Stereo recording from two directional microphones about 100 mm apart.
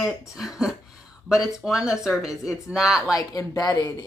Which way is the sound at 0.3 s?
5° right (ahead or behind).